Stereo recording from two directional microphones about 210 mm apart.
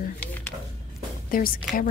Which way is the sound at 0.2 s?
5° left (ahead or behind).